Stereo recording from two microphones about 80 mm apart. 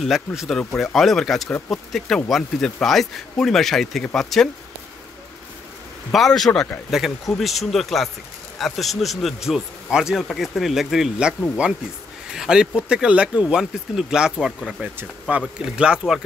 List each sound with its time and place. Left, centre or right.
0.0 s speech: centre
6.1 s speech: centre
10.2 s speech: centre
12.4 s speech: centre